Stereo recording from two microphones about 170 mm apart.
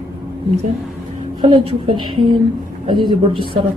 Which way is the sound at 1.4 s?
30° right (ahead or behind).